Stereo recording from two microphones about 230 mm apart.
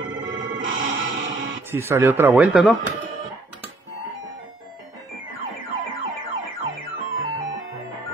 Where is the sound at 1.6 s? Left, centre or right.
Centre.